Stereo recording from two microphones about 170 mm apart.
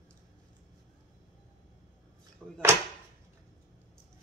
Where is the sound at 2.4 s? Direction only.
5° right (ahead or behind).